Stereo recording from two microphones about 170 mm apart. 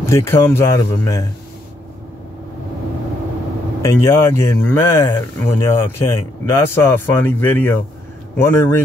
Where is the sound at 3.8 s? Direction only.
15° left (ahead or behind).